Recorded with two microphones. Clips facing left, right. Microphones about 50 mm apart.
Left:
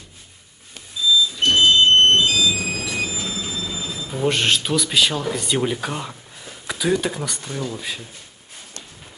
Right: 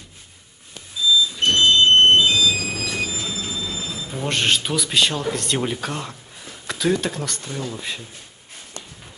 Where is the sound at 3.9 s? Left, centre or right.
Centre.